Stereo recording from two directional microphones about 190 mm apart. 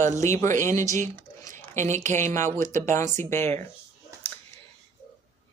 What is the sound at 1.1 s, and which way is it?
Squish, 15° left (ahead or behind).